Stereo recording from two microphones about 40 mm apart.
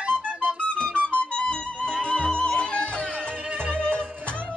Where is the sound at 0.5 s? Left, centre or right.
Left.